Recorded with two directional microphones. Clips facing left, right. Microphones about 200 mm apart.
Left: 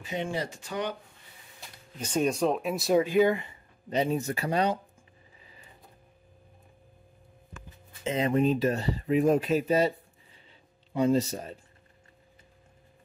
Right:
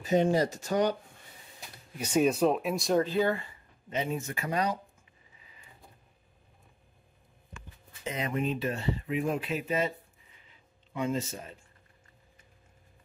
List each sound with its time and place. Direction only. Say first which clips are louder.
0.0 s speech: right 7 dB; 40° right (ahead or behind)
2.0 s speech: right 2 dB; 10° right (ahead or behind); by 3.5 s 15° left (ahead or behind)
3.9 s speech: left 5 dB; 35° left (ahead or behind)
8.0 s speech: left 7 dB; 30° left (ahead or behind)